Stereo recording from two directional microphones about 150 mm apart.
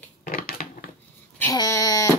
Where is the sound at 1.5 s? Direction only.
25° left (ahead or behind).